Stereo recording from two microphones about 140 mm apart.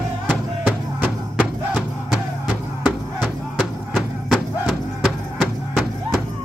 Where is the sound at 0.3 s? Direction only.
10° right (ahead or behind).